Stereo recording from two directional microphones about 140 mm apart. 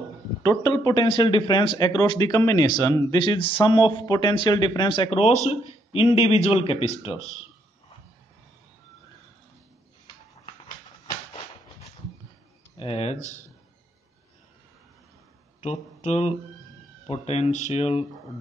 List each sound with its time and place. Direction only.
0.4 s speech: 20° left (ahead or behind)
3.2 s a man's voice: 35° left (ahead or behind)
12.7 s speech: 45° left (ahead or behind)
15.6 s a man's voice: 55° left (ahead or behind)